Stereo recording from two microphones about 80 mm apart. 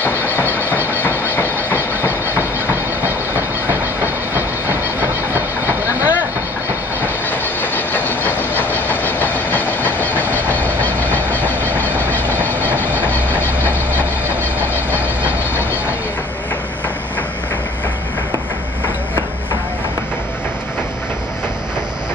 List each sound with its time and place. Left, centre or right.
0.1 s a sound: right
1.4 s train: right
7.2 s train: left
12.6 s train: right